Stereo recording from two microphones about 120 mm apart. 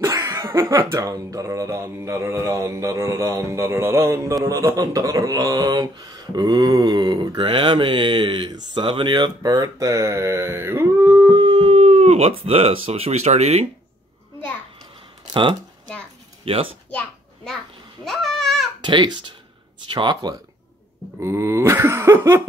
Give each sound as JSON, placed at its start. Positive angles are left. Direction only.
{"t": 0.0, "sound": "speech", "side_deg": -25}
{"t": 7.3, "sound": "speech", "side_deg": -45}
{"t": 11.3, "sound": "speech", "side_deg": -45}
{"t": 16.5, "sound": "speech", "side_deg": -50}
{"t": 18.0, "sound": "babbling", "side_deg": 0}
{"t": 18.8, "sound": "a child's voice", "side_deg": -40}
{"t": 21.2, "sound": "speech", "side_deg": -25}